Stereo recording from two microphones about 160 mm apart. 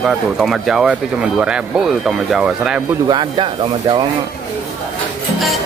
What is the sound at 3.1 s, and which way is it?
Speech, 30° right (ahead or behind).